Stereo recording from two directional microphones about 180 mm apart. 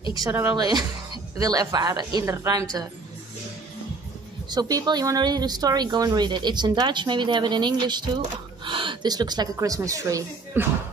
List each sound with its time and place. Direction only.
0.1 s speech: 20° right (ahead or behind)
4.5 s speech: 20° right (ahead or behind)